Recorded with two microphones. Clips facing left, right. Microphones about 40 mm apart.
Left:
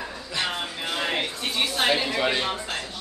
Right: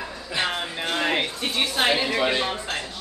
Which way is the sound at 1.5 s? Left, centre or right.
Right.